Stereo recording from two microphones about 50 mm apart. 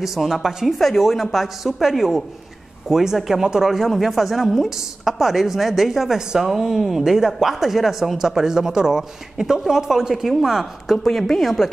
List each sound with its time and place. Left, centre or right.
0.0 s speech: centre
0.7 s speech: centre
11.1 s a woman's voice: centre